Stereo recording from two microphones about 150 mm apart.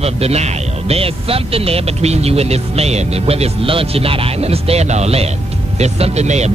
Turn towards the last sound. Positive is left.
turn(degrees=-45)  # may be behind; listen again after turning